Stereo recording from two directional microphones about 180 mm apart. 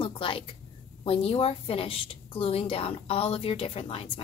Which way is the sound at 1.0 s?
30° left (ahead or behind).